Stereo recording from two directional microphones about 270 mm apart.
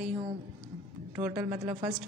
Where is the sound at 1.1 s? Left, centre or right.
Centre.